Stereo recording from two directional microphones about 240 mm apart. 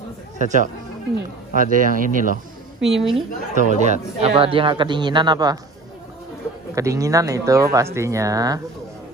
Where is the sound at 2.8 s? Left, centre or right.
Centre.